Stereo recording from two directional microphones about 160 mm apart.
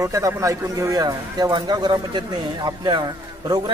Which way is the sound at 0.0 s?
20° right (ahead or behind).